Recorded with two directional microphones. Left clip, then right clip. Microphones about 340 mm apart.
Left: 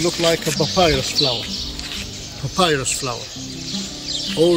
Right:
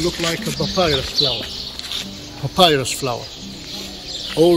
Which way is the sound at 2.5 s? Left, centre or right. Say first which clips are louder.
Right 4 dB; right.